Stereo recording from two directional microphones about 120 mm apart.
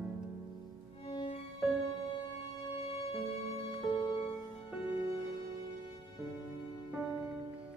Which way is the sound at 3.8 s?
40° left (ahead or behind).